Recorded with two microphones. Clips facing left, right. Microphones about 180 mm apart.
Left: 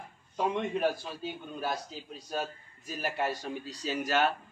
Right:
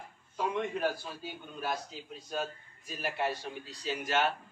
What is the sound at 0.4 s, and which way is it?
A man's voice, 25° left (ahead or behind).